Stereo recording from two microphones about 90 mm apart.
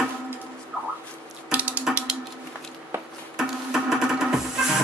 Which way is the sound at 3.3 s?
5° right (ahead or behind).